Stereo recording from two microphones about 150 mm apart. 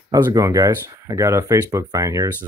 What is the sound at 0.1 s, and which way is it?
Speech, 25° right (ahead or behind).